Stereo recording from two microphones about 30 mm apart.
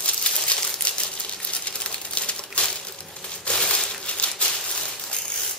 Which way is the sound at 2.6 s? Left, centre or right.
Left.